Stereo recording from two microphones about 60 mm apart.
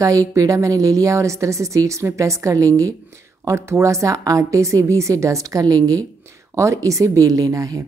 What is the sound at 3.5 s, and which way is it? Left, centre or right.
A woman's voice, right.